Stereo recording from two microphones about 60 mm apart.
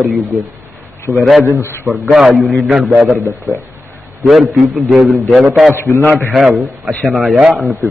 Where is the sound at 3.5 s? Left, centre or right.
Right.